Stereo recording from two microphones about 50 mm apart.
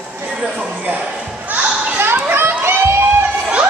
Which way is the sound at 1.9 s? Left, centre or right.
Right.